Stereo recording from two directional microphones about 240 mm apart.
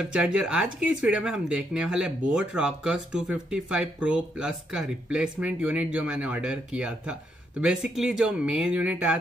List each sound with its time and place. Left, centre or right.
0.0 s speech: centre